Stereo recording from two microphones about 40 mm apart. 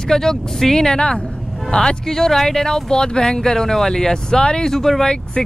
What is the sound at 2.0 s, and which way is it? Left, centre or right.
Speech, centre.